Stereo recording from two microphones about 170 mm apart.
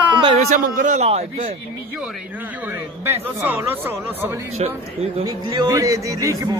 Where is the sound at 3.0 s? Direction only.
15° right (ahead or behind).